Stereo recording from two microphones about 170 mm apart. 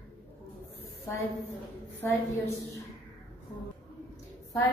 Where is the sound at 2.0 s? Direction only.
20° left (ahead or behind).